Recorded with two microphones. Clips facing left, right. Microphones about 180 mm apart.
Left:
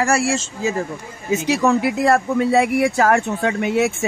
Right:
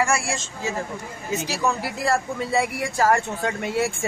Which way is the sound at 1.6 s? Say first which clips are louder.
Left 7 dB; 65° left (ahead or behind).